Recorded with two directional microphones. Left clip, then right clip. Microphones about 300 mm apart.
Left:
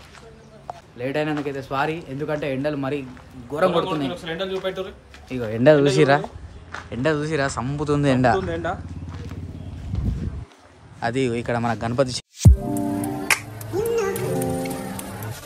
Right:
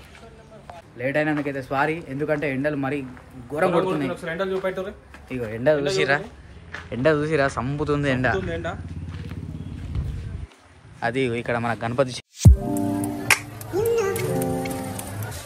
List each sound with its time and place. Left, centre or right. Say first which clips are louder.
0.9 s speech: right 2 dB; centre
5.5 s speech: left 5 dB; left
6.9 s speech: right 2 dB; centre
8.5 s a sound: left 3 dB; left
11.0 s music: left 1 dB; centre